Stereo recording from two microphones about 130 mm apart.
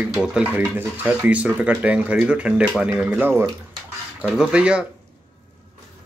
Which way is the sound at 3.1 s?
15° right (ahead or behind).